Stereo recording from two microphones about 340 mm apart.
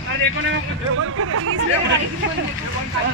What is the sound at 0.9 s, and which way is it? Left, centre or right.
Speech, right.